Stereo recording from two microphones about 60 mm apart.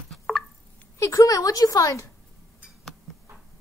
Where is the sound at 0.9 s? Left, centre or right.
Left.